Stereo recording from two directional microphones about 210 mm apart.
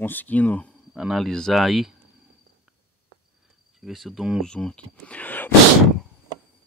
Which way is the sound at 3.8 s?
Centre (ahead or behind).